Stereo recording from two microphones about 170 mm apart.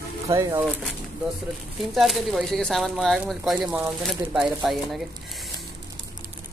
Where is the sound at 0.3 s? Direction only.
20° right (ahead or behind).